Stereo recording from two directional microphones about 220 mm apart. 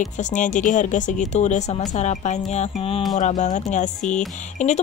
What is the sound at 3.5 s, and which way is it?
Speech, 30° left (ahead or behind).